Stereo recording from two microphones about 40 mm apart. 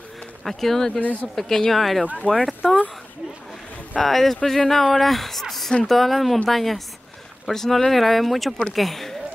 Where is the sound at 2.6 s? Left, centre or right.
Centre.